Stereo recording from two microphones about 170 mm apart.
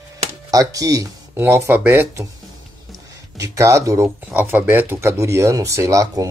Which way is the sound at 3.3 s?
20° right (ahead or behind).